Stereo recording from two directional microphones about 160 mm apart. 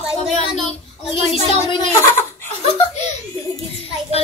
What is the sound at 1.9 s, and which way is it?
Laughter, 15° left (ahead or behind).